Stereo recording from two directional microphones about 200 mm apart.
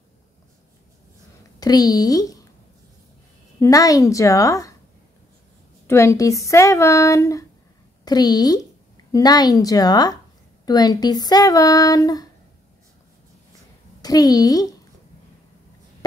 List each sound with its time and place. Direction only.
1.6 s speech: 20° left (ahead or behind)
3.5 s speech: 15° left (ahead or behind)
5.9 s a woman's voice: 15° left (ahead or behind)
14.0 s speech: 20° left (ahead or behind)